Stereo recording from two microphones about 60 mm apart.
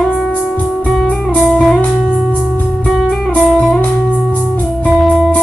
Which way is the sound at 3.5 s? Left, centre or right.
Centre.